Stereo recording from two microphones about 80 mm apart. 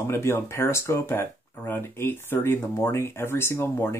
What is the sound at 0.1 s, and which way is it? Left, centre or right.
Speech, left.